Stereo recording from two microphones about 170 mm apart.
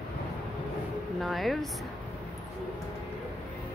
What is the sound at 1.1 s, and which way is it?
Speech, centre (ahead or behind).